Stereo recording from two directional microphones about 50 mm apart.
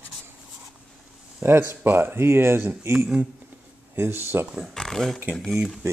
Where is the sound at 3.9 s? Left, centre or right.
Right.